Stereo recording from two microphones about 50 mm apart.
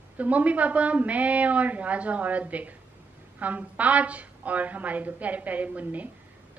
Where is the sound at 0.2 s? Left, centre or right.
Right.